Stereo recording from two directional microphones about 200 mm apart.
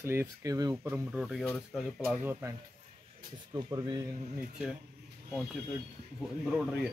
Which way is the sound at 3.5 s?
20° right (ahead or behind).